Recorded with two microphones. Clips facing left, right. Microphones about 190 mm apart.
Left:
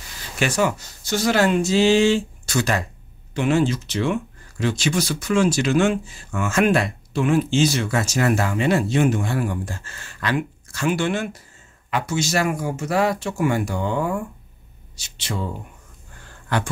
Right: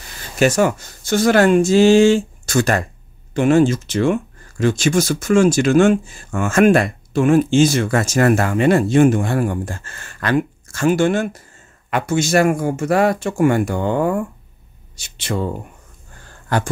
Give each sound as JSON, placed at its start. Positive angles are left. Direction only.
{"t": 0.4, "sound": "speech", "side_deg": -45}
{"t": 16.5, "sound": "speech", "side_deg": -45}